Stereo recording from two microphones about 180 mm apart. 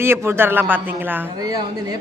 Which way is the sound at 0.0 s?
15° right (ahead or behind).